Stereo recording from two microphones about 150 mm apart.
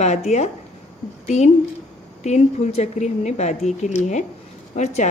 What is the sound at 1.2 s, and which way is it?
A woman's voice, 50° left (ahead or behind).